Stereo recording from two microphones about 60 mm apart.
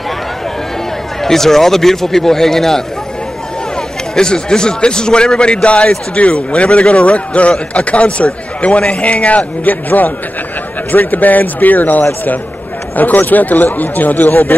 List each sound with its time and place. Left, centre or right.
1.2 s speech: centre
4.1 s a man's voice: centre; by 14.5 s left